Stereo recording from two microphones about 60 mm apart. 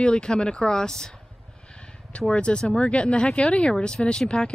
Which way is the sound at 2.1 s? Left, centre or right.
Centre.